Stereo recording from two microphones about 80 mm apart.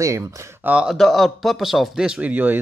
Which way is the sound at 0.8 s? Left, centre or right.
Centre.